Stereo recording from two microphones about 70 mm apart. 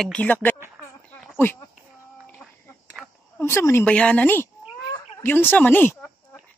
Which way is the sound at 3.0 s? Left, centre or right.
Centre.